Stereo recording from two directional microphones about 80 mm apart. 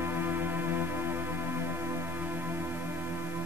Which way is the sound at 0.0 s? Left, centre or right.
Right.